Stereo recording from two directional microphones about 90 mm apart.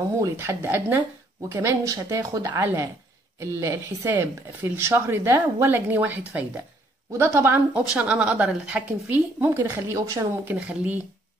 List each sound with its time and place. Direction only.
0.4 s speech: 25° right (ahead or behind)
1.9 s a woman's voice: 35° right (ahead or behind)
7.7 s speech: 15° right (ahead or behind)
9.6 s a woman's voice: 35° right (ahead or behind)
10.5 s speech: 15° right (ahead or behind)